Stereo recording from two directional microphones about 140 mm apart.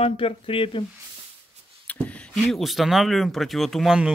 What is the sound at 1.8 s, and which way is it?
Speech, 10° left (ahead or behind).